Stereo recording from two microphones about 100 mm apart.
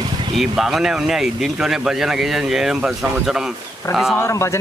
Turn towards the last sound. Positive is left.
turn(degrees=30)  # may be behind; listen again after turning